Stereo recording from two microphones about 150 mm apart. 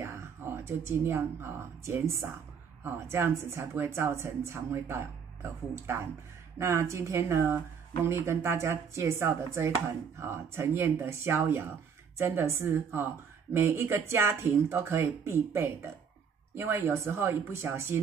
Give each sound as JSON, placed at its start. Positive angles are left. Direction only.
{"t": 0.0, "sound": "a woman's voice", "side_deg": -15}